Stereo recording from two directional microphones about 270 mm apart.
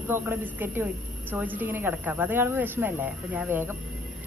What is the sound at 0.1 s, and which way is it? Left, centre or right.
Speech, centre.